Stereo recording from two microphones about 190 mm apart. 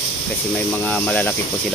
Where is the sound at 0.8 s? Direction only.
10° left (ahead or behind).